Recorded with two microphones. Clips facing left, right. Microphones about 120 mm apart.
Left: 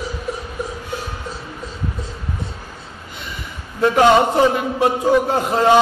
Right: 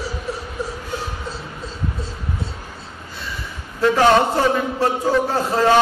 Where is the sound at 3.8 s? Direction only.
15° left (ahead or behind).